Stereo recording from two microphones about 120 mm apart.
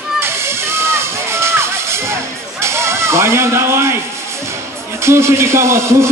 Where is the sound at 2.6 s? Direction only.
20° right (ahead or behind).